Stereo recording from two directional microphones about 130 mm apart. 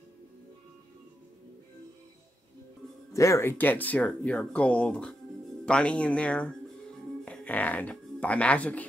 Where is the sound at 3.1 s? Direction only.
25° left (ahead or behind).